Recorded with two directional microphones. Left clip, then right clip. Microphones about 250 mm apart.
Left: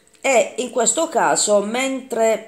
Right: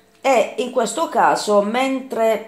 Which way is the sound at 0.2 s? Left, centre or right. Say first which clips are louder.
Right 1 dB; left.